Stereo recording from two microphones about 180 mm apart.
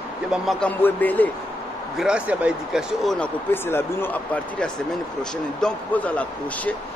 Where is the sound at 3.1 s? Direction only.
10° left (ahead or behind).